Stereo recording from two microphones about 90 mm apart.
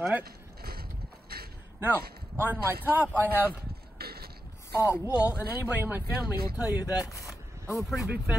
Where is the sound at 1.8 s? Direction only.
20° right (ahead or behind).